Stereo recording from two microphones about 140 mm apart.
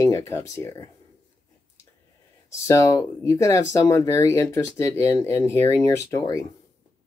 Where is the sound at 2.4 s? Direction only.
20° left (ahead or behind).